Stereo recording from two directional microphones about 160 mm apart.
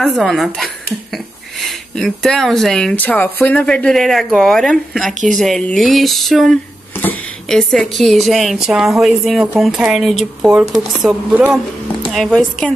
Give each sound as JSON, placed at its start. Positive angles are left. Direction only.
{"t": 0.0, "sound": "speech", "side_deg": 0}
{"t": 11.3, "sound": "speech", "side_deg": -10}
{"t": 12.1, "sound": "speech", "side_deg": 0}